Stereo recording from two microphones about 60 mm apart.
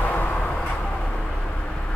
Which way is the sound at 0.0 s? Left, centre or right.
Left.